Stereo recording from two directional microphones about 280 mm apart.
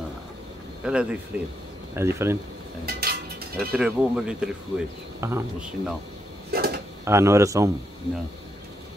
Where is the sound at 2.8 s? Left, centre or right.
Right.